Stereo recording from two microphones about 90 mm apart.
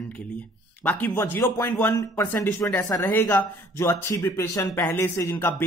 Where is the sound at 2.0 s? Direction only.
35° left (ahead or behind).